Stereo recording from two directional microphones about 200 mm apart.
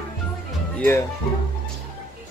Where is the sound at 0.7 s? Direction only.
10° left (ahead or behind).